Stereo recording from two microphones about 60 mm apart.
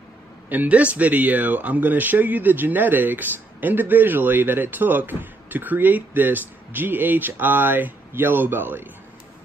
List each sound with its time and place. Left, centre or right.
0.5 s speech: right